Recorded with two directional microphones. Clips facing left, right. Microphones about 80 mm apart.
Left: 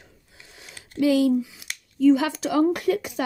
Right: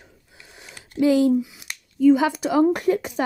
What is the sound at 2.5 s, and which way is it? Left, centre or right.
Speech, right.